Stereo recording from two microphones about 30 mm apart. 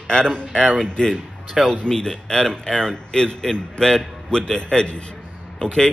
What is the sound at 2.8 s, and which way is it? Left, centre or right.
A man's voice, left.